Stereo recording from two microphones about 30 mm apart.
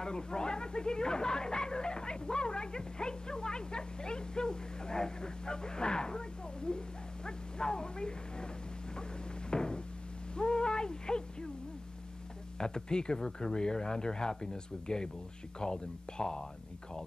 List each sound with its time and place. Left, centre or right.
0.0 s speech: left
9.5 s cupboard open or close: left
10.3 s a sound: left
12.5 s speech: left